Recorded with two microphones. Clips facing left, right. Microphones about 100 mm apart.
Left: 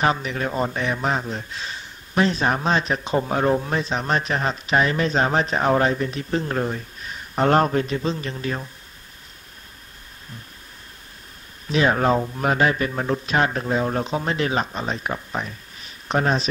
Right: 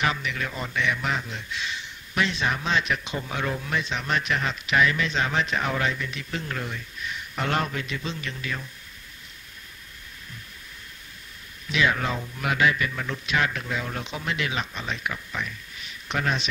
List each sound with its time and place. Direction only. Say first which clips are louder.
0.0 s a man's voice: left 5 dB; 35° left (ahead or behind)
11.6 s a man's voice: left 6 dB; 40° left (ahead or behind)